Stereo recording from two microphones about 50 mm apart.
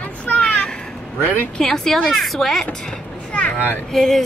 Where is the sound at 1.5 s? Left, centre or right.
Centre.